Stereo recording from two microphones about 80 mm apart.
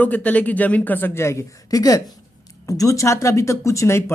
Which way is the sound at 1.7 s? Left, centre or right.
Left.